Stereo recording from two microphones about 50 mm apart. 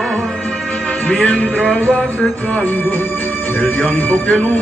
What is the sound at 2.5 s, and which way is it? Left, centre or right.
Music, left.